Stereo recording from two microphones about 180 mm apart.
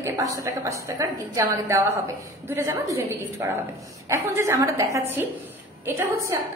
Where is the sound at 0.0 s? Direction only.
15° right (ahead or behind).